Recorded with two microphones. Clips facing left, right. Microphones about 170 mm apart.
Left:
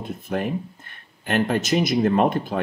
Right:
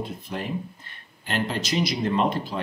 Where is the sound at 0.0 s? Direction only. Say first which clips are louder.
Left 5 dB; 50° left (ahead or behind).